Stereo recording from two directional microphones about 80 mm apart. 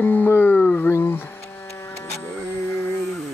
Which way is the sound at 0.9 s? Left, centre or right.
Left.